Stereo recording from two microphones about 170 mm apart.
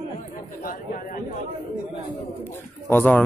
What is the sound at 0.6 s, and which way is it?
Speech, 55° left (ahead or behind).